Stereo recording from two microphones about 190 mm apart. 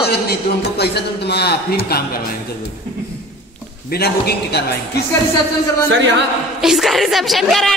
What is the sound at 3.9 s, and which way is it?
Speech, 55° left (ahead or behind).